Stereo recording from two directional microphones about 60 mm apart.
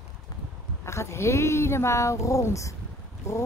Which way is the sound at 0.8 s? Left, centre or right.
Left.